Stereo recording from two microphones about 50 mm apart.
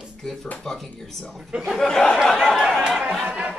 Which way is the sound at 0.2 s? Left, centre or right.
Centre.